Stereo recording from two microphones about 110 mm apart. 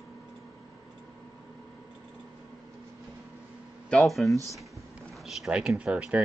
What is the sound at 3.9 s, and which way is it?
Speech, centre (ahead or behind).